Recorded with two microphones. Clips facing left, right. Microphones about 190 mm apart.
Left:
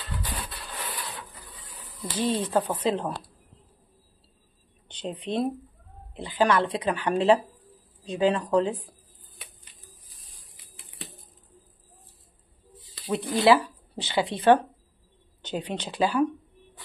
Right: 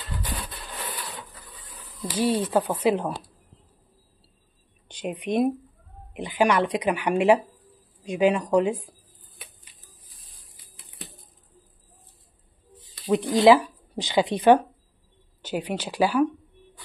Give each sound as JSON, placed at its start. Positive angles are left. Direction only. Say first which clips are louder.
{"t": 0.5, "sound": "a sound", "louder": "right 1 dB", "side_deg": -15}
{"t": 2.0, "sound": "speech", "louder": "right 3 dB", "side_deg": -10}
{"t": 4.8, "sound": "speech", "louder": "right 3 dB", "side_deg": -10}
{"t": 13.0, "sound": "speech", "louder": "right 5 dB", "side_deg": -15}